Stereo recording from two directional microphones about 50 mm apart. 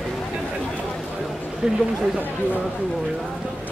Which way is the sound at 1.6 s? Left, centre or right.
Centre.